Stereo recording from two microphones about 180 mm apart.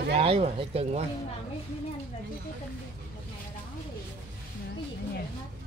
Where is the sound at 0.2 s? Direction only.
30° right (ahead or behind).